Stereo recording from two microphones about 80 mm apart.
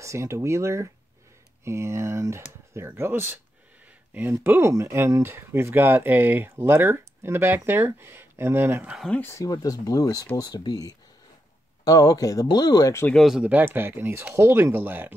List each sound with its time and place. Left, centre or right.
0.0 s speech: right
9.2 s speech: left
9.5 s speech: left
13.1 s speech: centre
13.4 s speech: centre